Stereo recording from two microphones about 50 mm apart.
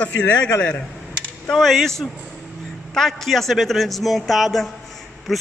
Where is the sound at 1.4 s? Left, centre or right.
Centre.